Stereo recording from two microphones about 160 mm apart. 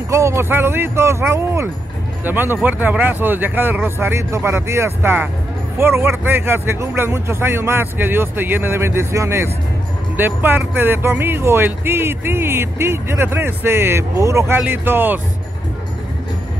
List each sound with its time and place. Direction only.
0.1 s speech: 20° right (ahead or behind)